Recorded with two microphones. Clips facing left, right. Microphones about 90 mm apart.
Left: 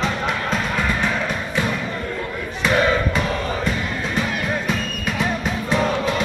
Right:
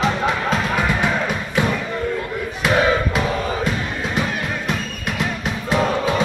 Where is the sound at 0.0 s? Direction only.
10° right (ahead or behind).